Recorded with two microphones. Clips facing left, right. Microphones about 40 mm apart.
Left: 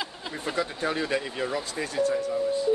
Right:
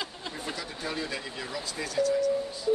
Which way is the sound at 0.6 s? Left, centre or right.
Left.